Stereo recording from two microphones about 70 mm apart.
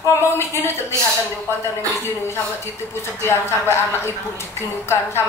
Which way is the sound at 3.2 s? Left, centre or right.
Left.